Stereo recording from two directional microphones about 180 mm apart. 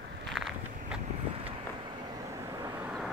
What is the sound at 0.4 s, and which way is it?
Walk, centre (ahead or behind).